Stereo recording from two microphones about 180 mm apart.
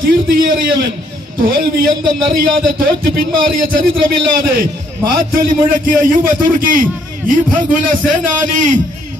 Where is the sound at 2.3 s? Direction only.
55° right (ahead or behind).